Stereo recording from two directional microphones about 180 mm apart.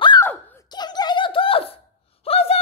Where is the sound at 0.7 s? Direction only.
25° left (ahead or behind).